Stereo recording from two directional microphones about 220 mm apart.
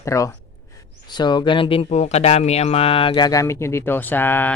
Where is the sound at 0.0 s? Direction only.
15° left (ahead or behind).